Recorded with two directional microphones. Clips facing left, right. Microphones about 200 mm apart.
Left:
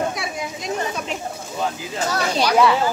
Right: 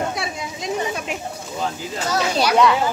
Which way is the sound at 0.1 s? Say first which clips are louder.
Even; 25° right (ahead or behind).